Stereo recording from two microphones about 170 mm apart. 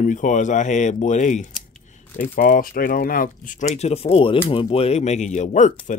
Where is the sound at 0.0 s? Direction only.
50° left (ahead or behind).